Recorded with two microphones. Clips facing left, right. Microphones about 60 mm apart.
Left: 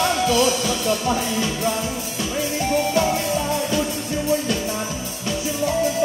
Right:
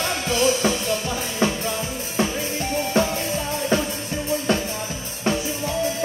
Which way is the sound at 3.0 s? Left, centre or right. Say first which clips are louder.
Right 1 dB; right.